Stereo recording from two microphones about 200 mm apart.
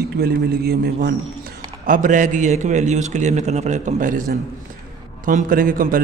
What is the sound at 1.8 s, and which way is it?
A man's voice, 40° right (ahead or behind).